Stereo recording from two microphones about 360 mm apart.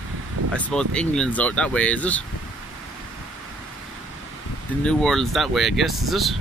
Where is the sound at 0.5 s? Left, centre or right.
Centre.